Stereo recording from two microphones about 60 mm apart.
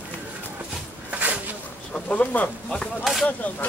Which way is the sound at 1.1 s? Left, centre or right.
Right.